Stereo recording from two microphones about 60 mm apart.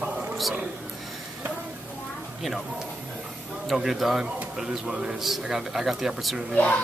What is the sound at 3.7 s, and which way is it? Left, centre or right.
Speech, centre.